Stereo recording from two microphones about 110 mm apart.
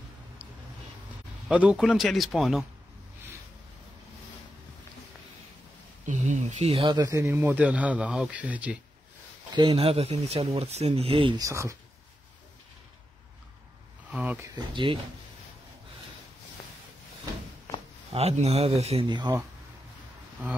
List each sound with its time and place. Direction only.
1.5 s speech: 10° right (ahead or behind)
6.0 s speech: 90° right; by 6.9 s 70° right (ahead or behind)
6.9 s speech: 35° right (ahead or behind); by 8.7 s 15° right (ahead or behind)
9.7 s speech: 60° right (ahead or behind); by 10.9 s 75° right (ahead or behind)
11.0 s speech: 55° right (ahead or behind)
11.3 s speech: 30° right (ahead or behind)
14.1 s speech: 15° right (ahead or behind)
14.5 s speech: 50° right (ahead or behind)
18.1 s speech: 70° right (ahead or behind)
19.0 s speech: 40° right (ahead or behind)